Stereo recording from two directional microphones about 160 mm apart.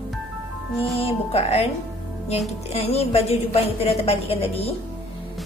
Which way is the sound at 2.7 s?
40° left (ahead or behind).